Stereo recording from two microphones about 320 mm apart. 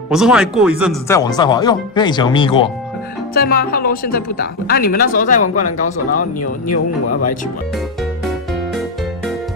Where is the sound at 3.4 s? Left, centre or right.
Left.